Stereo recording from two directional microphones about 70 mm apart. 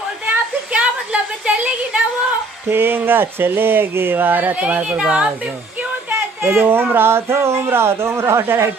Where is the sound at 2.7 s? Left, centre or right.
Right; by 5.3 s centre.